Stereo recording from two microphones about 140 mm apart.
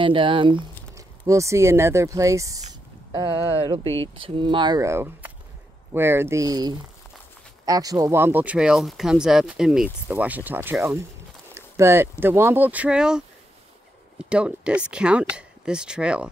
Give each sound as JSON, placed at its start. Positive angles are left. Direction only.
{"t": 0.0, "sound": "speech", "side_deg": -35}
{"t": 0.9, "sound": "speech", "side_deg": -20}
{"t": 3.1, "sound": "speech", "side_deg": -35}
{"t": 4.8, "sound": "speech", "side_deg": -15}